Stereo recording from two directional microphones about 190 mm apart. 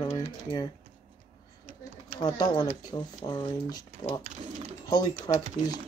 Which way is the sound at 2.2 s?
20° left (ahead or behind).